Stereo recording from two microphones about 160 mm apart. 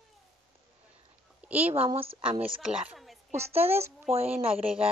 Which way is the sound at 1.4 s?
10° right (ahead or behind).